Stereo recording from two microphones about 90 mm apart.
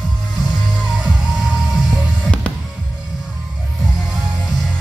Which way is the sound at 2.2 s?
15° left (ahead or behind).